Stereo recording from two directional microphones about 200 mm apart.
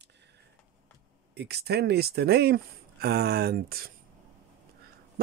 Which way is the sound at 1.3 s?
55° right (ahead or behind).